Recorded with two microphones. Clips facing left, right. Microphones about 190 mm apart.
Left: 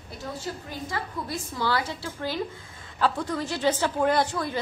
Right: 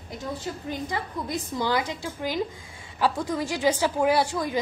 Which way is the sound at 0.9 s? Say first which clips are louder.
Left 2 dB; 20° right (ahead or behind).